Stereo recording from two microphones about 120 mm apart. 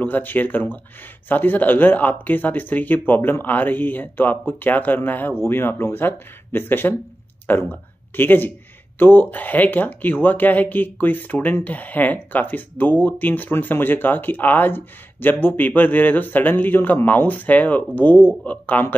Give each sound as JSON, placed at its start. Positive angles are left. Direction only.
{"t": 0.0, "sound": "speech", "side_deg": 15}